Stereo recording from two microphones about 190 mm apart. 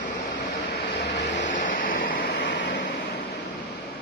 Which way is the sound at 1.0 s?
70° left (ahead or behind).